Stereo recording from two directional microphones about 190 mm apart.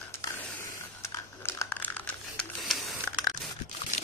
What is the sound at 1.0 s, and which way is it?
Crumpling, 15° left (ahead or behind).